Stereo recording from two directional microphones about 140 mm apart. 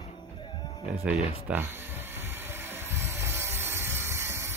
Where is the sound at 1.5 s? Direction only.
10° right (ahead or behind).